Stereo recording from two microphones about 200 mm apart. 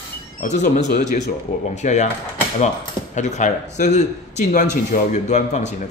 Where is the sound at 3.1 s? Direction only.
35° left (ahead or behind).